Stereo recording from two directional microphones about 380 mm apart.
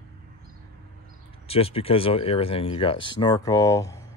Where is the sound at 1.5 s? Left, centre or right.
Centre.